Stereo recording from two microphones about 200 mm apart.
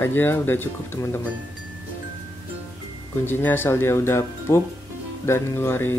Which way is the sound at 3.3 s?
10° left (ahead or behind).